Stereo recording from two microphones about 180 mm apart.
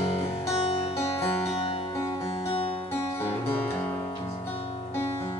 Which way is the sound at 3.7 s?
10° left (ahead or behind).